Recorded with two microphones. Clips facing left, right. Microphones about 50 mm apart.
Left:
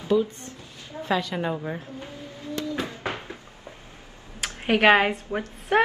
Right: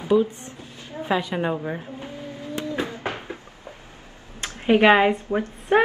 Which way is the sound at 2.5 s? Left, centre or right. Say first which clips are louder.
Right 2 dB; right.